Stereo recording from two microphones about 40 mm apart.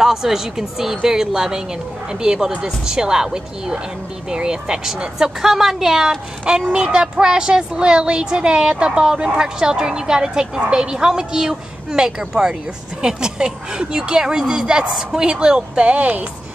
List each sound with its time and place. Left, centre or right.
0.0 s speech: centre
6.4 s speech: right